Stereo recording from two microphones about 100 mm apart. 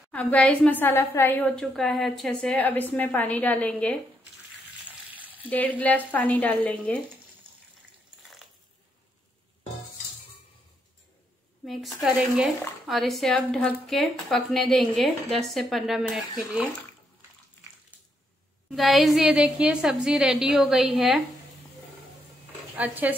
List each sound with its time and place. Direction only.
0.1 s a woman's voice: 15° left (ahead or behind)
1.6 s a woman's voice: 5° left (ahead or behind)
5.1 s frying: 15° right (ahead or behind)
5.5 s a woman's voice: 15° left (ahead or behind)
8.2 s a sound: centre (ahead or behind)
11.6 s speech: centre (ahead or behind)
18.8 s speech: centre (ahead or behind)
22.8 s speech: 15° right (ahead or behind)